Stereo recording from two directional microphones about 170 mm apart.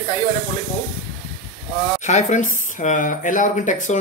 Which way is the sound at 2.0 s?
45° left (ahead or behind).